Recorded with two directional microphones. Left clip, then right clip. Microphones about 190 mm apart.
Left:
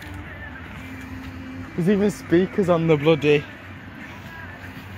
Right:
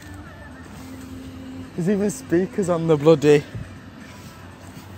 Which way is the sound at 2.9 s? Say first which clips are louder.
Right 3 dB; 30° right (ahead or behind).